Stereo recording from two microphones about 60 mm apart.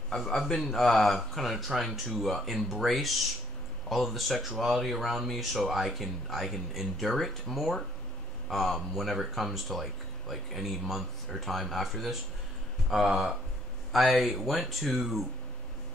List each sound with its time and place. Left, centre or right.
0.1 s a man's voice: centre